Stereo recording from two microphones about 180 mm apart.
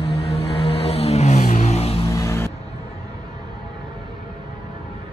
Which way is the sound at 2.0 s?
15° left (ahead or behind).